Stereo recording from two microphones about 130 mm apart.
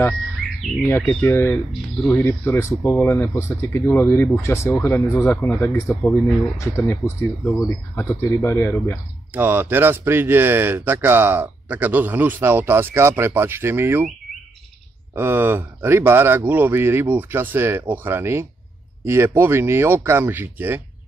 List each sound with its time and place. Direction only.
0.4 s bird: centre (ahead or behind)
0.8 s speech: 15° left (ahead or behind)
9.3 s speech: 15° right (ahead or behind)
15.1 s speech: 15° right (ahead or behind)